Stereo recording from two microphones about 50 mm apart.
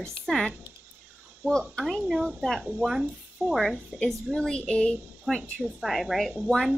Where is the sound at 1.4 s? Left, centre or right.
Right.